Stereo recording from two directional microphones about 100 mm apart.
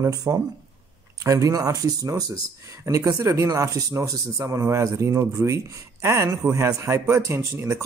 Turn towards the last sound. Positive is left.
turn(degrees=-25)  # may be behind; listen again after turning